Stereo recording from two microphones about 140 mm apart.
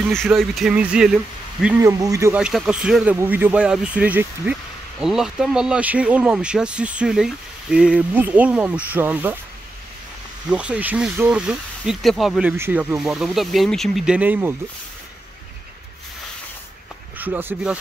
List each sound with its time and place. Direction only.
0.1 s speech: centre (ahead or behind)
1.8 s speech: 25° right (ahead or behind)
2.3 s speech: 5° right (ahead or behind)
10.5 s speech: 10° right (ahead or behind)
12.5 s speech: 15° right (ahead or behind)
12.9 s speech: 5° right (ahead or behind)
17.2 s speech: 15° right (ahead or behind)